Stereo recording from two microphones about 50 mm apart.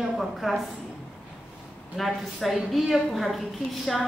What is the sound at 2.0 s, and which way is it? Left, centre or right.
A woman's voice, centre.